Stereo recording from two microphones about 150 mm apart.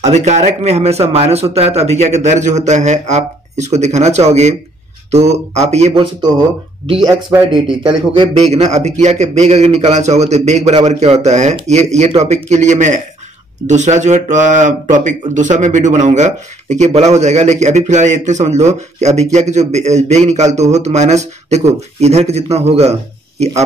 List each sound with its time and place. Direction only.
0.0 s speech: 50° right (ahead or behind)
7.3 s speech: 5° right (ahead or behind)
8.4 s speech: 45° right (ahead or behind)